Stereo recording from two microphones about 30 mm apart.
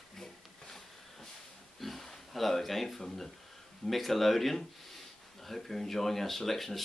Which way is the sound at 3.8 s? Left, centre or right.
Centre.